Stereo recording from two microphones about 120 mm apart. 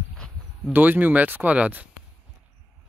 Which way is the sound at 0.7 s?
15° right (ahead or behind).